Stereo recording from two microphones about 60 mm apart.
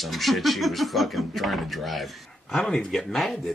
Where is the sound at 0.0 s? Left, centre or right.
Centre.